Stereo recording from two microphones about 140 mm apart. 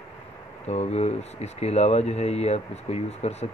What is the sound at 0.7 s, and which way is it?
Speech, 50° left (ahead or behind).